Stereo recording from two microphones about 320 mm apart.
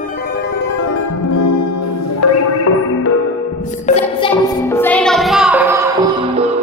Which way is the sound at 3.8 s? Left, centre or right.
Centre.